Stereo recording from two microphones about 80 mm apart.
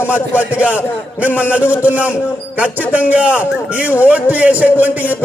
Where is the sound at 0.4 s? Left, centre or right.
Centre.